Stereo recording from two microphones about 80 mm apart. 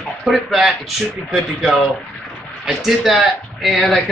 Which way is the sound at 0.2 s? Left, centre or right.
Centre.